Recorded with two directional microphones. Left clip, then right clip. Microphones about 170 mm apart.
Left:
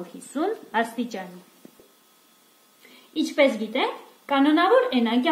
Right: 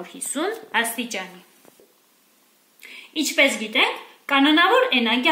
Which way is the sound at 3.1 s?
40° left (ahead or behind).